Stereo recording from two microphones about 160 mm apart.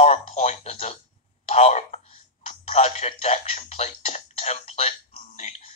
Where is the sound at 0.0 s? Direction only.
45° left (ahead or behind).